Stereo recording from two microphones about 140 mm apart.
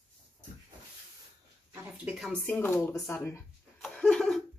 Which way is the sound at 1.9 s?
5° right (ahead or behind).